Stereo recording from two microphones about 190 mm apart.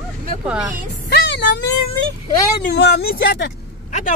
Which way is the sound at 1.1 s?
65° left (ahead or behind).